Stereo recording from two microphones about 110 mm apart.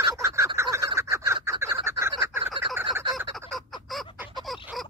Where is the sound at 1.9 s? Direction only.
25° right (ahead or behind).